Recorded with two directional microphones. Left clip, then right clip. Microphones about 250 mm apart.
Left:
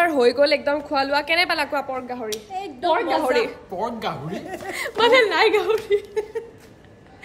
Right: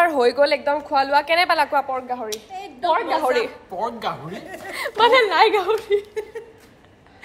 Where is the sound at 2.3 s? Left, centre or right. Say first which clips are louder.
Left 2 dB; centre.